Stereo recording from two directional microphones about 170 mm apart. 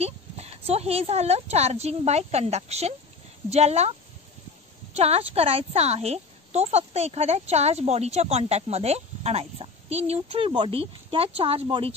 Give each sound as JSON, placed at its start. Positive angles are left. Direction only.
{"t": 0.0, "sound": "a woman's voice", "side_deg": -40}
{"t": 4.9, "sound": "a woman's voice", "side_deg": -35}